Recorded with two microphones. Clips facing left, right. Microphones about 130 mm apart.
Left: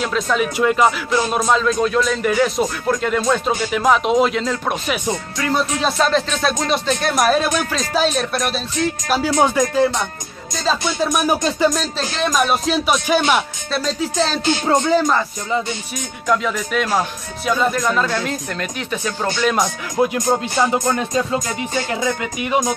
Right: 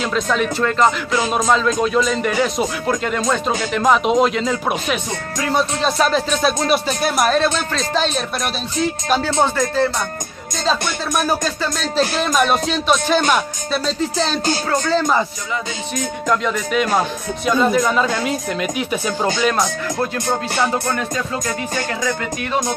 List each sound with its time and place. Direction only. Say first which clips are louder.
0.0 s speech: even; 5° left (ahead or behind)
7.2 s speech: even; 5° left (ahead or behind)
9.4 s music: left 4 dB; 10° left (ahead or behind)
10.5 s speech: even; 5° left (ahead or behind)
11.2 s music: left 4 dB; 15° left (ahead or behind)
11.7 s speech: right 4 dB; 5° right (ahead or behind)
14.7 s music: left 4 dB; 15° left (ahead or behind)
16.3 s speech: left 1 dB; centre (ahead or behind)
19.5 s music: even; 15° left (ahead or behind)